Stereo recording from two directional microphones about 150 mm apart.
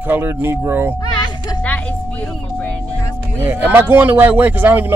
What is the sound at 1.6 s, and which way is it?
Music, 10° left (ahead or behind).